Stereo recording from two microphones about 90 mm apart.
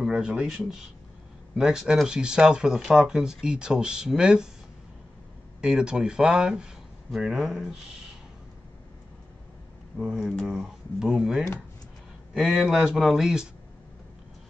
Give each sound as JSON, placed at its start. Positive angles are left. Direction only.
{"t": 0.0, "sound": "speech", "side_deg": -5}
{"t": 5.6, "sound": "speech", "side_deg": -10}
{"t": 10.0, "sound": "a man's voice", "side_deg": 0}